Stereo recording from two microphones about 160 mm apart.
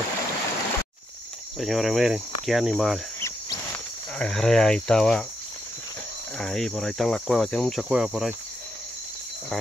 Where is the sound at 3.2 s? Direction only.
20° left (ahead or behind).